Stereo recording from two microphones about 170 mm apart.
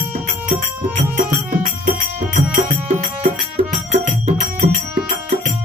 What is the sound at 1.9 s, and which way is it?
Music, 50° right (ahead or behind).